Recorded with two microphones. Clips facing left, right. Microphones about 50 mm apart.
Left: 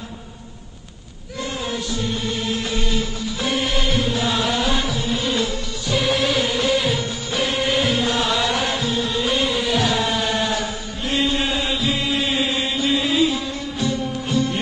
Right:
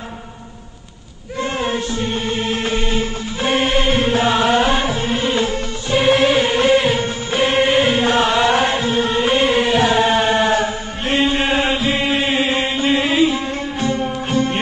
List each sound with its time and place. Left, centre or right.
1.4 s music: right